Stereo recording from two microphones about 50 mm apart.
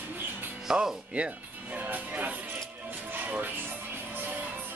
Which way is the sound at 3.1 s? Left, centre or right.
Right.